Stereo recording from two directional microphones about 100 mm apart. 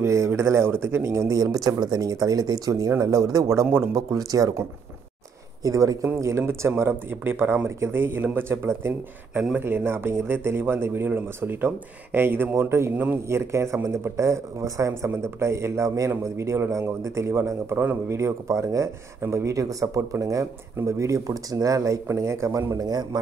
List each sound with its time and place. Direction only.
0.0 s a man's voice: 30° right (ahead or behind)
6.0 s speech: 25° right (ahead or behind)
13.3 s a man's voice: 30° right (ahead or behind)